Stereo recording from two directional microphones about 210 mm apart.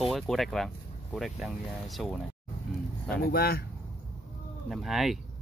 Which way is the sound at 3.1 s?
50° left (ahead or behind).